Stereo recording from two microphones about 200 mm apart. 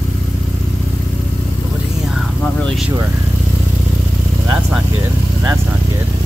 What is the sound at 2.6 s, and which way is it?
Speech, centre (ahead or behind).